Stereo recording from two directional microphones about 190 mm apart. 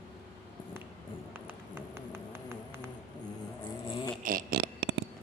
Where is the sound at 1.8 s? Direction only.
15° right (ahead or behind).